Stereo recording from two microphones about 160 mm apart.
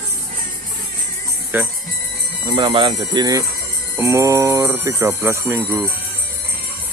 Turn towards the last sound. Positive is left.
turn(degrees=-15)  # may be behind; listen again after turning